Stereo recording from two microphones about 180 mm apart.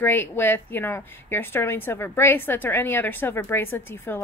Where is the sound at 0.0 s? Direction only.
10° left (ahead or behind).